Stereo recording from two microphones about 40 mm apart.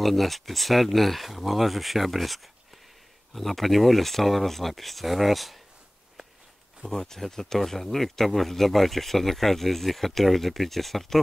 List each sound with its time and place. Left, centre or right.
0.0 s speech: centre
6.9 s speech: centre